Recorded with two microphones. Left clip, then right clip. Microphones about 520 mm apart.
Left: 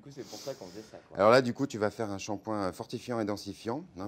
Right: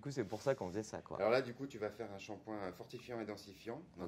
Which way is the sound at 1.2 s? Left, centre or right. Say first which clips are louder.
Left 12 dB; left.